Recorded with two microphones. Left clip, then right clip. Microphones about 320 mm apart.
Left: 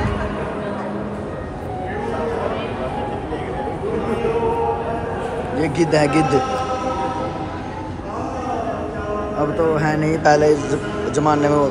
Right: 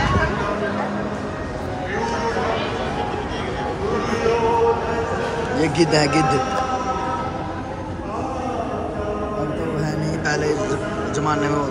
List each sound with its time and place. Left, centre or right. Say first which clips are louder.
5.6 s a man's voice: left 1 dB; centre
9.8 s a man's voice: left 6 dB; centre